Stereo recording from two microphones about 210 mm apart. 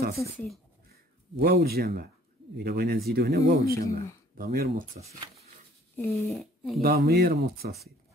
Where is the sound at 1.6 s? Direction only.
45° right (ahead or behind).